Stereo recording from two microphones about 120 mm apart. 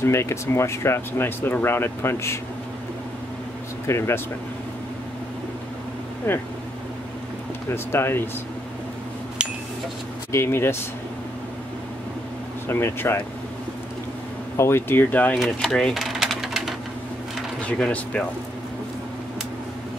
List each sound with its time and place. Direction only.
0.0 s speech: 20° left (ahead or behind)
3.8 s speech: 20° left (ahead or behind)
6.2 s speech: 15° left (ahead or behind)
7.7 s speech: 20° left (ahead or behind)
10.3 s speech: 20° left (ahead or behind)
12.6 s speech: 20° left (ahead or behind)
14.6 s speech: 20° left (ahead or behind)
15.3 s bird: centre (ahead or behind)
17.6 s speech: 10° left (ahead or behind)